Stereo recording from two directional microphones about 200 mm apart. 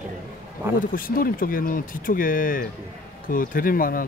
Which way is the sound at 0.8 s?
45° left (ahead or behind).